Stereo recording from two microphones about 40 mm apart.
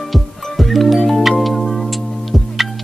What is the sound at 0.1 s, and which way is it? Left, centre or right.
Music, centre.